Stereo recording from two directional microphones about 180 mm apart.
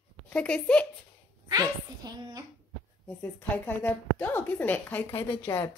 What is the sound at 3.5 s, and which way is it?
A woman's voice, 10° left (ahead or behind).